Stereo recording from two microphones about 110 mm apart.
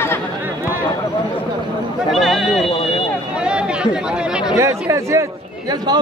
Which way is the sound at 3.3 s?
10° right (ahead or behind).